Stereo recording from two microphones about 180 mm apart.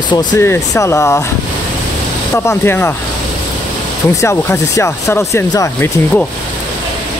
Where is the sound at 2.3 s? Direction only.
15° left (ahead or behind).